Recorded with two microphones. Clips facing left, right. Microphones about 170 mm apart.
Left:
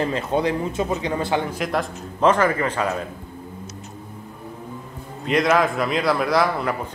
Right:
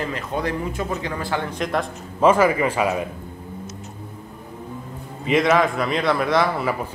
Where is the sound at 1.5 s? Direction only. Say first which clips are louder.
Even; centre (ahead or behind).